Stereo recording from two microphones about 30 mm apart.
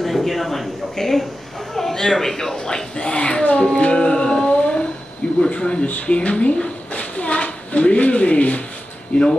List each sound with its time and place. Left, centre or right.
0.0 s a man's voice: centre; by 2.8 s left
3.0 s a woman's voice: left
3.5 s music: left
5.5 s speech: left
6.9 s a sound: left
9.1 s speech: left